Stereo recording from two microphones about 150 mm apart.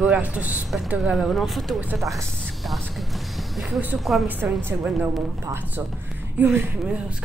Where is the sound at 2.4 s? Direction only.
5° left (ahead or behind).